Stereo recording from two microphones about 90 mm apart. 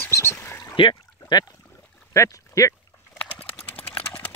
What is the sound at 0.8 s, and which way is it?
Speech, 75° left (ahead or behind).